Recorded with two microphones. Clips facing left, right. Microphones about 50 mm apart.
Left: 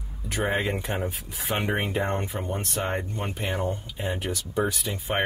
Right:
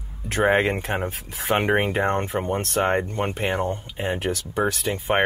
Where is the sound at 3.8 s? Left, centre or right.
Right.